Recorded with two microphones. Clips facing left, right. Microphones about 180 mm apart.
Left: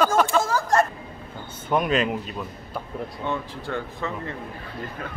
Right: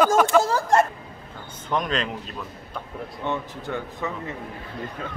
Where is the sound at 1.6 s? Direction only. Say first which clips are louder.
Left 4 dB; 10° left (ahead or behind).